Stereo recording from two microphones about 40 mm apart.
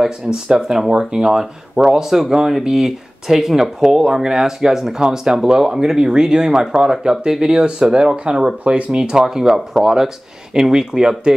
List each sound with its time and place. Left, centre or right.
0.0 s speech: centre